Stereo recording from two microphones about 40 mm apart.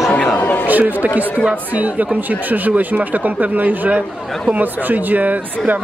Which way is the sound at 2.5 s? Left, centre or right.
Right.